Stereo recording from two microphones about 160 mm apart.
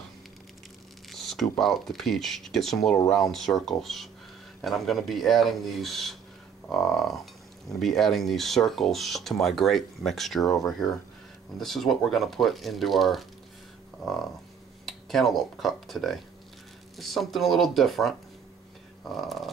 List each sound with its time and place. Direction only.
1.1 s speech: centre (ahead or behind)
10.4 s speech: 20° left (ahead or behind)
11.6 s speech: centre (ahead or behind)
14.9 s speech: centre (ahead or behind)
19.1 s speech: centre (ahead or behind)